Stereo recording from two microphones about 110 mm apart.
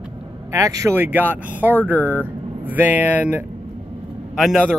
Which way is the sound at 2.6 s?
15° right (ahead or behind).